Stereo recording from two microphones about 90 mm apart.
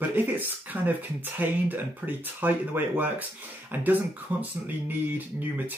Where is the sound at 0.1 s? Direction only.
20° right (ahead or behind).